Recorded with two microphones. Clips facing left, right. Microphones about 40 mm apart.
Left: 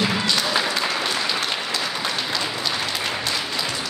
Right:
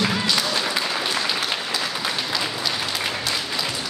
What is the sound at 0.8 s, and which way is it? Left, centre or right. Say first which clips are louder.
Applause: left 1 dB; centre.